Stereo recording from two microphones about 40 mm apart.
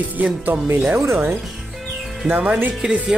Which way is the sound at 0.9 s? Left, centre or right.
Right.